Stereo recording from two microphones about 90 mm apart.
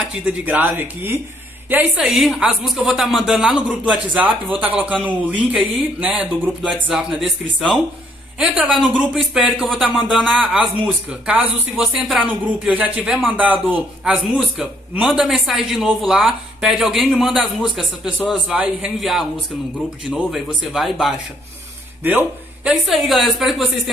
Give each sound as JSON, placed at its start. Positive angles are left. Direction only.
{"t": 0.1, "sound": "a man's voice", "side_deg": -15}
{"t": 6.9, "sound": "speech", "side_deg": -5}
{"t": 8.4, "sound": "a man's voice", "side_deg": -10}
{"t": 11.7, "sound": "speech", "side_deg": -5}
{"t": 12.3, "sound": "a man's voice", "side_deg": -15}
{"t": 15.0, "sound": "speech", "side_deg": -5}
{"t": 20.2, "sound": "speech", "side_deg": 0}
{"t": 22.0, "sound": "a man's voice", "side_deg": -15}
{"t": 22.8, "sound": "speech", "side_deg": 0}